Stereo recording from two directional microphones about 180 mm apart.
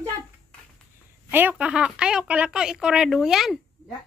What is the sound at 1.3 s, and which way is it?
Speech, 10° right (ahead or behind).